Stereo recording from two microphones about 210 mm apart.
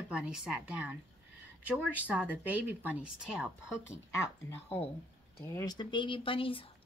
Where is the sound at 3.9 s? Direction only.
15° left (ahead or behind).